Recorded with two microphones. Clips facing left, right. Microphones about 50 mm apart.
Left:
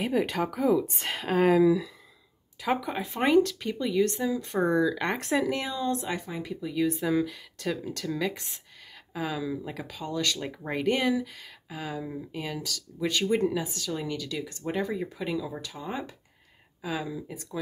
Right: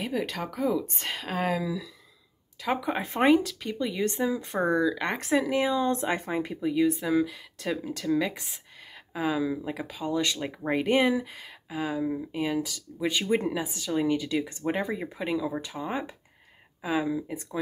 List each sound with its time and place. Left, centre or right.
0.0 s speech: centre
1.6 s speech: left
2.6 s speech: centre
3.2 s speech: centre
3.9 s speech: centre
4.5 s speech: centre
5.7 s speech: right
6.8 s speech: centre